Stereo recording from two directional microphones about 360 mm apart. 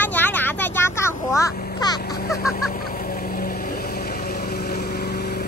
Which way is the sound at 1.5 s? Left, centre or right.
Left.